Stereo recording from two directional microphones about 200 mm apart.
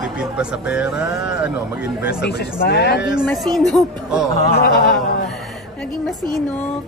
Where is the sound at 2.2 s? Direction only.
55° left (ahead or behind).